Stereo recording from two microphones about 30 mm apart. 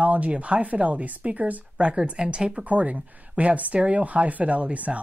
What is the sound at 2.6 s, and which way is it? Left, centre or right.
Speech, right.